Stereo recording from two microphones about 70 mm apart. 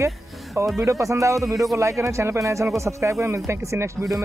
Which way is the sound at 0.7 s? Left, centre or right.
Right.